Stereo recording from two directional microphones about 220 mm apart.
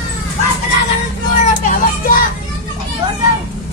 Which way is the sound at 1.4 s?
35° left (ahead or behind).